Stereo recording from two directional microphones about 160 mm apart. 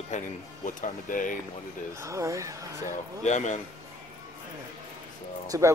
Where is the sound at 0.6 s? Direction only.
55° left (ahead or behind).